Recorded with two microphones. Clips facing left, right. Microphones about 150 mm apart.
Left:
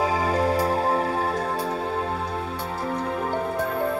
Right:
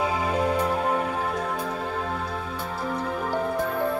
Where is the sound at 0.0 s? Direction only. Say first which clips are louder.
Left 2 dB; 35° left (ahead or behind).